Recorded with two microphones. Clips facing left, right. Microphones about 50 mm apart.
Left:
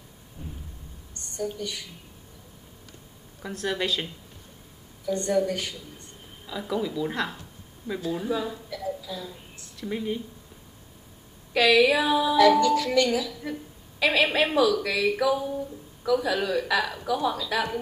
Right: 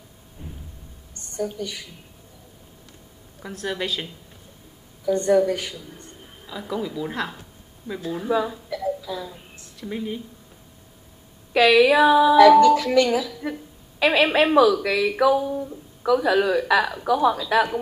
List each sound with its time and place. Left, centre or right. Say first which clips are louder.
0.4 s a sound: even; right
3.3 s speech: even; centre
5.1 s speech: right 6 dB; right
6.4 s speech: even; centre
9.0 s a sound: right 5 dB; centre
9.8 s speech: even; centre
11.5 s speech: right 4 dB; centre